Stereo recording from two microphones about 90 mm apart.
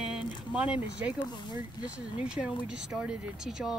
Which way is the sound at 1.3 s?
55° left (ahead or behind).